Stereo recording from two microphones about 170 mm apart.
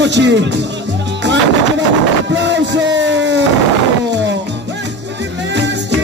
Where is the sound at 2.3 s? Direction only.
90° right.